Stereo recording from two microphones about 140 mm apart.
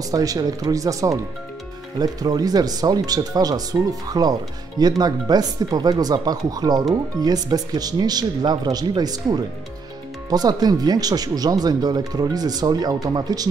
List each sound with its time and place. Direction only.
0.1 s speech: 25° right (ahead or behind)